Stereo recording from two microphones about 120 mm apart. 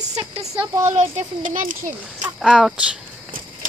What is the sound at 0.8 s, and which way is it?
Speech, 70° right (ahead or behind).